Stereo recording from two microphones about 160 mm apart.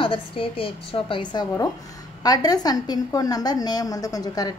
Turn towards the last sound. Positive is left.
turn(degrees=25)  # may be behind; listen again after turning